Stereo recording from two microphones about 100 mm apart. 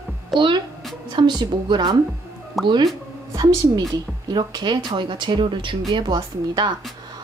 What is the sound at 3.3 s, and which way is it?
Speech, 45° right (ahead or behind).